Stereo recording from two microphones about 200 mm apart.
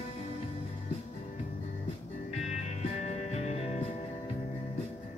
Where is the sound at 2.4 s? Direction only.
35° left (ahead or behind).